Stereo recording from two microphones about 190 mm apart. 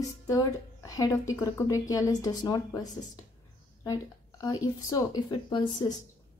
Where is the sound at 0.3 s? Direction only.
15° left (ahead or behind).